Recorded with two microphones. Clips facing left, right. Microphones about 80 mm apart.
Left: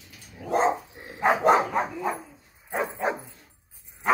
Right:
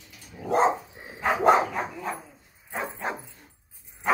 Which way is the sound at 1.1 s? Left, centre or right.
Centre.